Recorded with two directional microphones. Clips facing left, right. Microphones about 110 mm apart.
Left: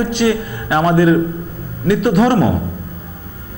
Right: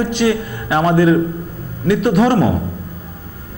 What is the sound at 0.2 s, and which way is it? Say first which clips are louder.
A man's voice: left 1 dB; 20° left (ahead or behind).